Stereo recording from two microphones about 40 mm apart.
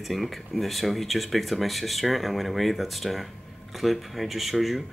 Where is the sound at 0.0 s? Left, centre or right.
Centre.